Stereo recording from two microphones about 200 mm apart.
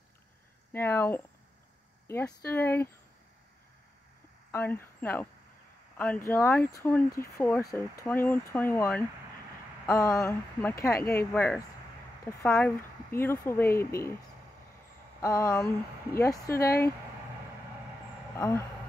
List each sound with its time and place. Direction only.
0.7 s speech: 10° left (ahead or behind)
4.5 s speech: 10° left (ahead or behind)
15.2 s speech: 15° left (ahead or behind)
18.3 s speech: 15° left (ahead or behind)